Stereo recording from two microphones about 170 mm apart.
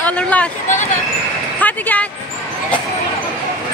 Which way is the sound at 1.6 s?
10° left (ahead or behind).